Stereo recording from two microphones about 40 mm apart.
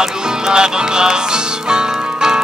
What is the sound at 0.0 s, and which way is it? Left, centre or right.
Music, centre.